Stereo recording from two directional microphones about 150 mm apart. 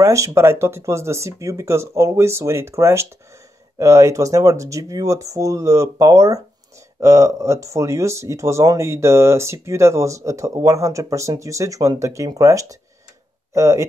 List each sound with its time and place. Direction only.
0.0 s speech: 20° right (ahead or behind)